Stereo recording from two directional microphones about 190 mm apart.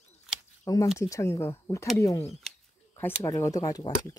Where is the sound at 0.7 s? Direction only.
15° left (ahead or behind).